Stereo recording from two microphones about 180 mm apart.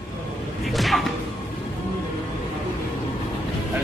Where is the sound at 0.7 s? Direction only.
Centre (ahead or behind).